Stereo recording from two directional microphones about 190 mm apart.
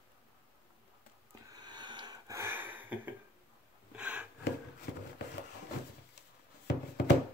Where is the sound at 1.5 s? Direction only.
20° right (ahead or behind); by 4.3 s 5° right (ahead or behind).